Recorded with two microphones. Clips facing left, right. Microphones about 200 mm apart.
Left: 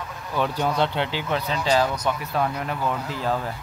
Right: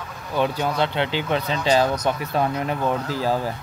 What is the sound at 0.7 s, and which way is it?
Speech, 15° right (ahead or behind).